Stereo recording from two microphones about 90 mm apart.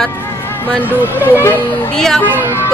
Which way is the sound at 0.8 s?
25° left (ahead or behind).